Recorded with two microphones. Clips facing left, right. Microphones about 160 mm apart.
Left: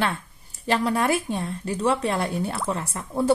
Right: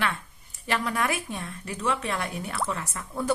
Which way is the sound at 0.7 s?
30° left (ahead or behind).